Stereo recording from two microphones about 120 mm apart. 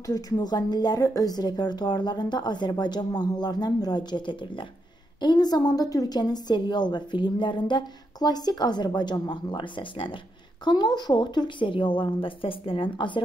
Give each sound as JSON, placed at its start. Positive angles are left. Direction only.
{"t": 0.0, "sound": "a woman's voice", "side_deg": 35}